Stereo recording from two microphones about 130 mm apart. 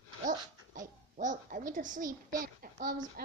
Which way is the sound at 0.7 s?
80° right.